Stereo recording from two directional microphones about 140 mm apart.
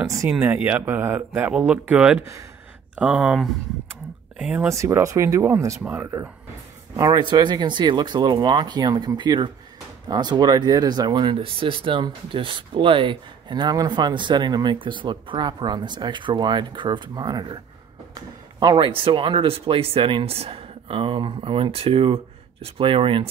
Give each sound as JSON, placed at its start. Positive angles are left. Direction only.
{"t": 0.3, "sound": "speech", "side_deg": -10}
{"t": 4.6, "sound": "speech", "side_deg": -20}
{"t": 7.0, "sound": "speech", "side_deg": -30}